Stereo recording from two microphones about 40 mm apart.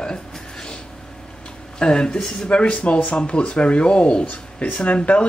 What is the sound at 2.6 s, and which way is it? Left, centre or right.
Speech, left.